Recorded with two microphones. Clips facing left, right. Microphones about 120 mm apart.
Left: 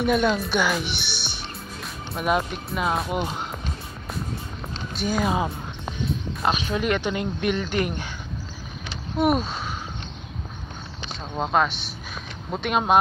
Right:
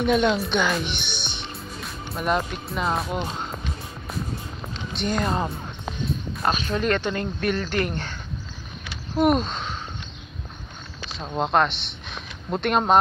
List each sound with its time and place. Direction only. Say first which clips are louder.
0.0 s speech: right 1 dB; 5° left (ahead or behind)
1.0 s music: right 1 dB; 20° right (ahead or behind)
1.8 s speech: left 1 dB; 5° left (ahead or behind)
4.9 s speech: left 1 dB; 5° left (ahead or behind)
9.1 s speech: right 2 dB; 5° left (ahead or behind)
11.1 s speech: right 1 dB; centre (ahead or behind)